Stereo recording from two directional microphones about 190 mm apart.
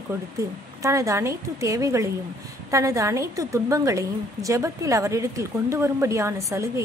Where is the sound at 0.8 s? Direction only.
15° right (ahead or behind).